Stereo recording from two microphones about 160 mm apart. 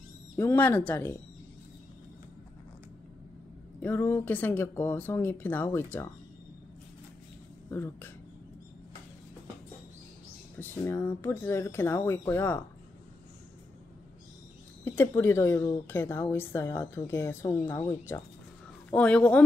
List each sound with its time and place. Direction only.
0.4 s speech: 15° left (ahead or behind)
3.8 s speech: 10° left (ahead or behind)
7.7 s speech: 15° left (ahead or behind)
10.6 s speech: 15° left (ahead or behind)
14.9 s speech: 15° left (ahead or behind)
18.9 s speech: 5° left (ahead or behind)